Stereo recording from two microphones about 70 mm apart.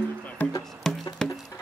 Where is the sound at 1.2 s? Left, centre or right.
Centre.